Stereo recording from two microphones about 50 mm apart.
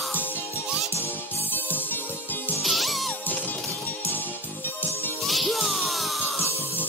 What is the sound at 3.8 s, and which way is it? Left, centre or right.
Music, left.